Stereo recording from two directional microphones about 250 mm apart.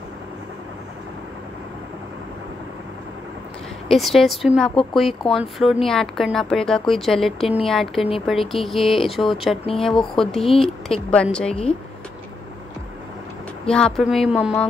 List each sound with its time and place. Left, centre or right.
3.9 s speech: centre
13.7 s speech: centre